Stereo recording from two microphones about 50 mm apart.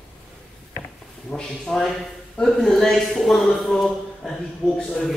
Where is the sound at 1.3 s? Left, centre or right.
Centre.